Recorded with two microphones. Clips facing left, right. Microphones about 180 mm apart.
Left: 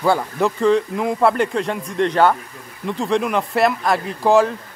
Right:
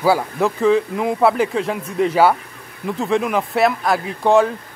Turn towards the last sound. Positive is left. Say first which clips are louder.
# even
turn(degrees=0)  # may be behind; listen again after turning